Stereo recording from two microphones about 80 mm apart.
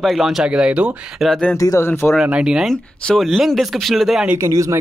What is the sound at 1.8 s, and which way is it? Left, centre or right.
Speech, left.